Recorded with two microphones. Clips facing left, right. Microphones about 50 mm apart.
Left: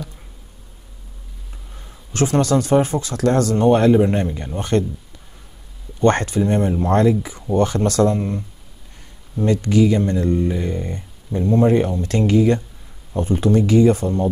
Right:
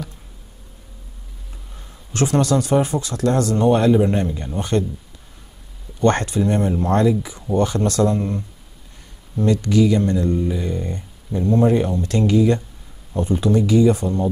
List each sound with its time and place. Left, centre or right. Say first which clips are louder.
1.7 s a sound: left 2 dB; centre
2.1 s speech: left 1 dB; left
4.6 s speech: left 1 dB; left
5.9 s speech: left 1 dB; left
6.9 s speech: left 2 dB; left
8.2 s speech: even; centre
9.5 s speech: even; left
10.8 s speech: even; centre
12.0 s speech: even; left